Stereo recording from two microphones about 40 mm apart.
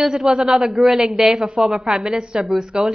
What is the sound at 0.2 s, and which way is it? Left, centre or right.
A man's voice, centre.